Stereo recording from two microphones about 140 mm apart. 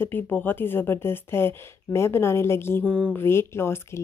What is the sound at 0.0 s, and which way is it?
Speech, 15° left (ahead or behind).